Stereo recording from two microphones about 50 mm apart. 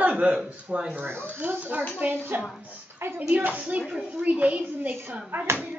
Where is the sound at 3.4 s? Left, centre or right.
Right.